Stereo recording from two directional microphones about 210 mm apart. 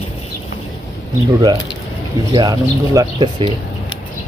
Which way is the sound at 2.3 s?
20° right (ahead or behind).